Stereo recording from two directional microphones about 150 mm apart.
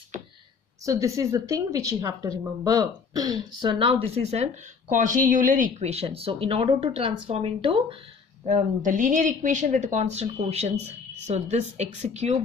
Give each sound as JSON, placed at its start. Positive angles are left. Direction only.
{"t": 0.8, "sound": "a woman's voice", "side_deg": -20}
{"t": 8.5, "sound": "a woman's voice", "side_deg": -50}